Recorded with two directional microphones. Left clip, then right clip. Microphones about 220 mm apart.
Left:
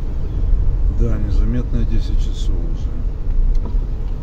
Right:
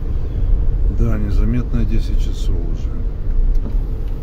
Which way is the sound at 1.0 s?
30° right (ahead or behind).